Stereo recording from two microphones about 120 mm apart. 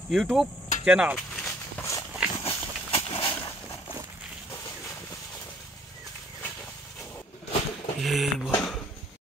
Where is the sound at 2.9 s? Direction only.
50° left (ahead or behind).